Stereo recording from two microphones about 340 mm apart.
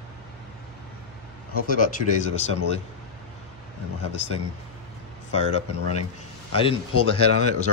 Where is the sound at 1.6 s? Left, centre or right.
Left.